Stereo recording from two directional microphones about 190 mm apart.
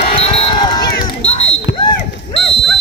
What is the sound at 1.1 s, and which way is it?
Smoke detector, 35° left (ahead or behind).